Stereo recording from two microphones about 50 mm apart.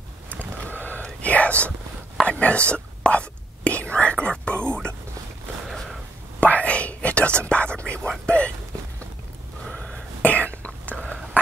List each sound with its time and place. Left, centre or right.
0.3 s a sound: left
1.2 s whispering: left
2.2 s speech: left
3.1 s whispering: left
6.4 s whispering: left
8.3 s a sound: left
10.2 s whispering: left